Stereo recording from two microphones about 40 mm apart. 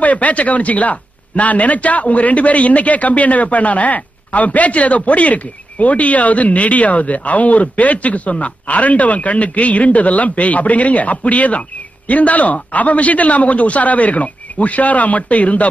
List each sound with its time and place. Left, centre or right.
0.0 s a man's voice: left